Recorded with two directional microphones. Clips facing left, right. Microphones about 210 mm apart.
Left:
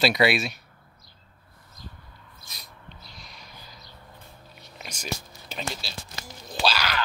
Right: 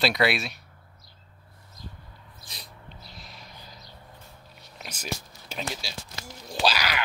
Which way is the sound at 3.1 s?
Centre (ahead or behind).